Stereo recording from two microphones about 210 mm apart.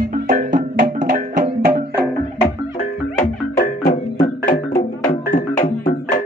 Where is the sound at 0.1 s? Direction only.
40° right (ahead or behind).